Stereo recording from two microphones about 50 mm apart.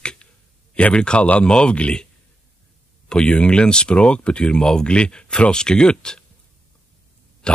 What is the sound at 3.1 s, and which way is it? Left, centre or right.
Speech, centre.